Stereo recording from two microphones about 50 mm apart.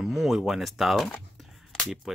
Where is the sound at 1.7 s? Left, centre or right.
Centre.